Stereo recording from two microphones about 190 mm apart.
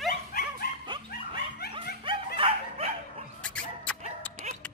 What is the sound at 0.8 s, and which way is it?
Dog, 25° right (ahead or behind).